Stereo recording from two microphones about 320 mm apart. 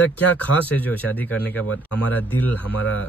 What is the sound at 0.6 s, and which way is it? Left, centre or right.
Speech, centre.